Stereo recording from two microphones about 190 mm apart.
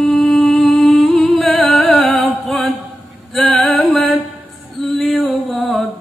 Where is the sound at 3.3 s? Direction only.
Centre (ahead or behind).